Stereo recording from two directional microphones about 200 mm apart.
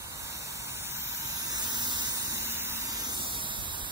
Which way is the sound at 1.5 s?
20° right (ahead or behind).